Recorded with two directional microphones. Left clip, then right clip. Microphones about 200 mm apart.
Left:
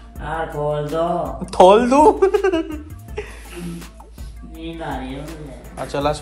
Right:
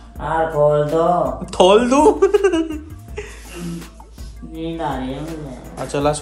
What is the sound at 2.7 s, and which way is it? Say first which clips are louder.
Music: right 2 dB; 5° right (ahead or behind).